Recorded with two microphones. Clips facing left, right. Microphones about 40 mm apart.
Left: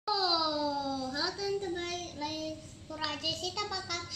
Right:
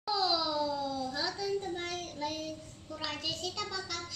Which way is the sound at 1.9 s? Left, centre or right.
Right.